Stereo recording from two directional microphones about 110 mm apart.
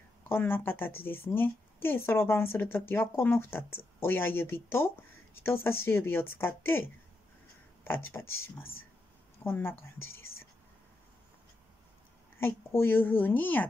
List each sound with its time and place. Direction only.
0.3 s a woman's voice: 20° left (ahead or behind)
12.4 s a woman's voice: 20° left (ahead or behind)